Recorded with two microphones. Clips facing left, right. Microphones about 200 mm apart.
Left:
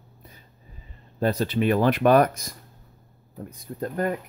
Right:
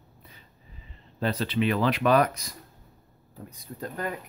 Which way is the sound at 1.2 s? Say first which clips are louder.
Left 3 dB; 45° left (ahead or behind).